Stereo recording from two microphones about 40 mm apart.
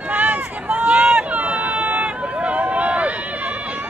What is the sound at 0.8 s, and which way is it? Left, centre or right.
Run, right.